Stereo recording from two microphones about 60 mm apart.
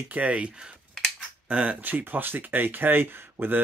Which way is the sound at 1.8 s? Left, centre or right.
Right.